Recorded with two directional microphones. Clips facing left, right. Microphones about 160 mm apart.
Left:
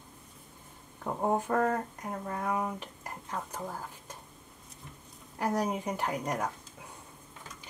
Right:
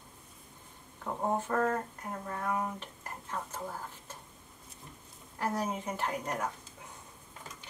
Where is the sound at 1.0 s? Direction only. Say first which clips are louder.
Left 3 dB; 10° left (ahead or behind).